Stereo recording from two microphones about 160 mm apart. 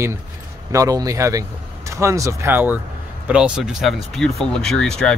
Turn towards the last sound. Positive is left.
turn(degrees=5)  # may be behind; listen again after turning